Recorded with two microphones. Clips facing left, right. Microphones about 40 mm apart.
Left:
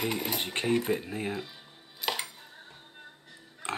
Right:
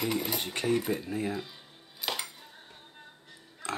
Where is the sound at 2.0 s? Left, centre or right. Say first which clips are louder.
Left 2 dB; centre.